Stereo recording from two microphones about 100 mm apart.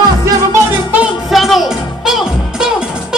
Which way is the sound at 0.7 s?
15° right (ahead or behind).